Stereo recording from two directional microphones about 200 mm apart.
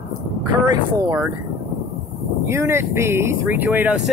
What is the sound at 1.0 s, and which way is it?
Speech, 10° right (ahead or behind).